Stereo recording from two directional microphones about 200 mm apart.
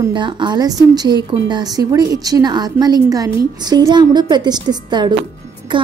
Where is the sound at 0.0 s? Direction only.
25° right (ahead or behind).